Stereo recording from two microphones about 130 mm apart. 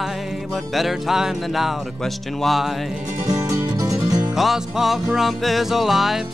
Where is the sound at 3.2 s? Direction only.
25° right (ahead or behind).